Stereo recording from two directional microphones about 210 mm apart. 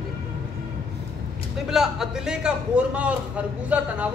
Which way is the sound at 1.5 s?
Centre (ahead or behind).